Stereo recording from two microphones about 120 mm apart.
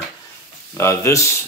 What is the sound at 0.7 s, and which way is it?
Speech, 25° left (ahead or behind).